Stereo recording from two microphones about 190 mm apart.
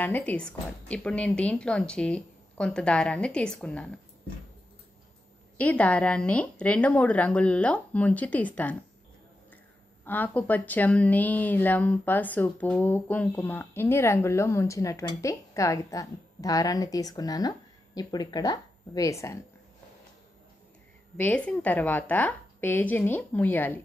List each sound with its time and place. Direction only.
0.0 s a woman's voice: 10° left (ahead or behind)
5.6 s speech: 5° left (ahead or behind)
10.0 s speech: 10° left (ahead or behind)
21.2 s speech: 5° left (ahead or behind)